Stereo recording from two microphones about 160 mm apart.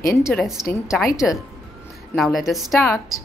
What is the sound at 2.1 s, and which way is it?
Speech, centre (ahead or behind).